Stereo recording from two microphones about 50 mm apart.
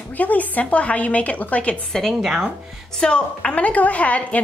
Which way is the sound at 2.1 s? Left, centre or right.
Centre.